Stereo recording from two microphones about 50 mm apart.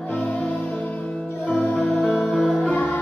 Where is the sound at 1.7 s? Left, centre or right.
Centre.